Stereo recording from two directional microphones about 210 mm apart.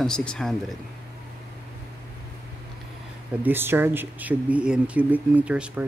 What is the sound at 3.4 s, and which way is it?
Speech, 10° right (ahead or behind).